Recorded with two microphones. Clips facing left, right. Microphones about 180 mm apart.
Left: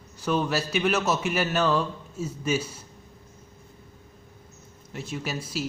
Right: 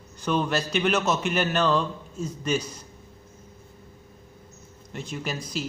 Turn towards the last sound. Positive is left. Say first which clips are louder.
# even
turn(degrees=5)  # may be behind; listen again after turning